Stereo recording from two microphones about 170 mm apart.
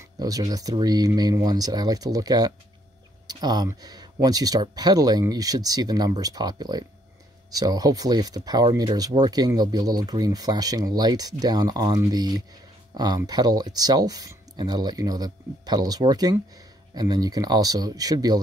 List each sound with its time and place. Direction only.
0.2 s speech: 20° right (ahead or behind)